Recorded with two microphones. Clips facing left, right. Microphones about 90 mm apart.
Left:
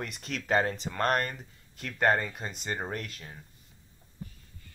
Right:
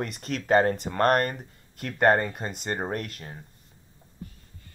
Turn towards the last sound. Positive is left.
turn(degrees=-45)  # may be behind; listen again after turning